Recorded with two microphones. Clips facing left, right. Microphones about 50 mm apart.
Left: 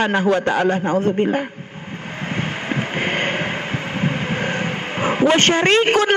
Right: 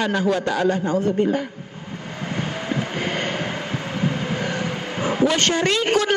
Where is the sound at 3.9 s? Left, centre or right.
Left.